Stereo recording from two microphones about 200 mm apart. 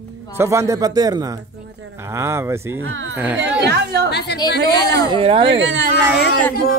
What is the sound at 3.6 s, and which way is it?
Speech, 55° right (ahead or behind).